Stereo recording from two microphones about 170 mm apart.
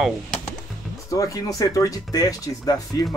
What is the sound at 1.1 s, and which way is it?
Speech, 20° left (ahead or behind).